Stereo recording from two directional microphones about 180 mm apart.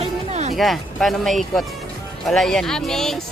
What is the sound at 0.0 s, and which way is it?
Music, 40° right (ahead or behind).